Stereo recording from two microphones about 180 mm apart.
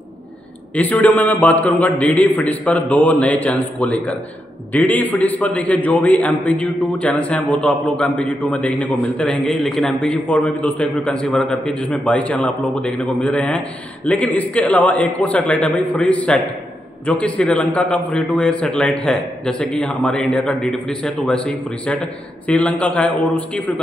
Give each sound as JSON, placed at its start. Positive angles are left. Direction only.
{"t": 0.7, "sound": "a man's voice", "side_deg": 10}